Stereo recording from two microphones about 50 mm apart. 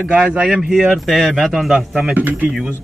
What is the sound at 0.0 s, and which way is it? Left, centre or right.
Speech, right.